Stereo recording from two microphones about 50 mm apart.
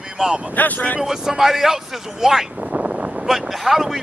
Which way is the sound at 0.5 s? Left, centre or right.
Left.